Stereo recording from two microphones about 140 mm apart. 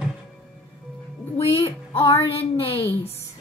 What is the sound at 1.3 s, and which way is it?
Speech, 20° left (ahead or behind).